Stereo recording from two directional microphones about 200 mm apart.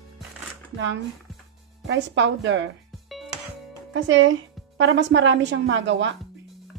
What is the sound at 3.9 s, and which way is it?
A woman's voice, 70° right (ahead or behind).